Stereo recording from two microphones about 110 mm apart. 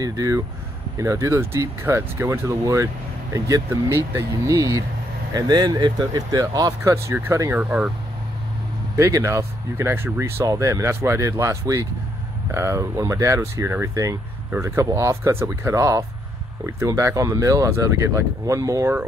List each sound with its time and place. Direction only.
0.0 s speech: 30° right (ahead or behind)
8.9 s speech: 25° right (ahead or behind)